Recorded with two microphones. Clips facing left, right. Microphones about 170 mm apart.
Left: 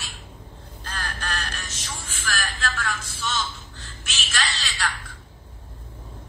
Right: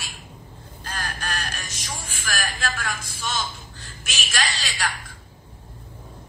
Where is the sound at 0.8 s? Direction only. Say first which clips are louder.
Right 1 dB; 15° right (ahead or behind).